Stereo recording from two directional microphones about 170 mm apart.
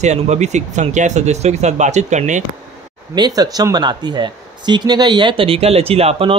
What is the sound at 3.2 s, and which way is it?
Speech, 25° right (ahead or behind).